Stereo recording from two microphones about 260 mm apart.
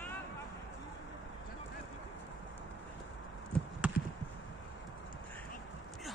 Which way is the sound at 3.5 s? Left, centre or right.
Centre.